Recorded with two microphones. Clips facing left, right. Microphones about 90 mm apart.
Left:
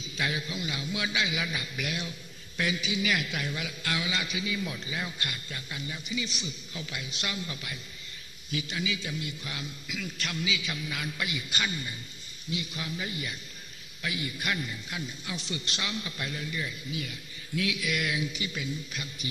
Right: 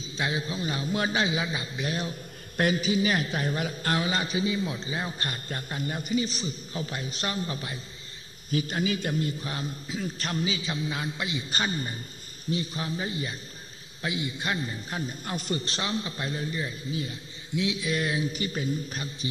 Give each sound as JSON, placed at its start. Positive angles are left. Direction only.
{"t": 0.0, "sound": "a man's voice", "side_deg": -30}